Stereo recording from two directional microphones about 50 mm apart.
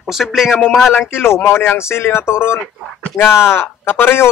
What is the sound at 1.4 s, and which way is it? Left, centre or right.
Speech, left.